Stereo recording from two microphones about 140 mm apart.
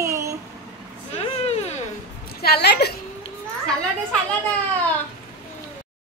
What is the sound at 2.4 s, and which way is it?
Speech, 90° left.